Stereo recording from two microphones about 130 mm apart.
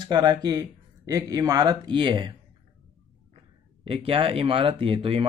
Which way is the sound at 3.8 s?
45° right (ahead or behind).